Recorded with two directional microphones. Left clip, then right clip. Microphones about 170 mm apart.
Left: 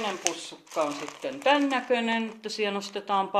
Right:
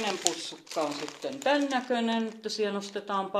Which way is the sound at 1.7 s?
15° left (ahead or behind).